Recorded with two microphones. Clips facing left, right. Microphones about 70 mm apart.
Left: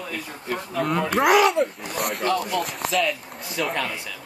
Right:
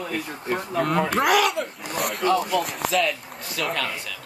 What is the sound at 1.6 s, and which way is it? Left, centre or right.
Speech, left.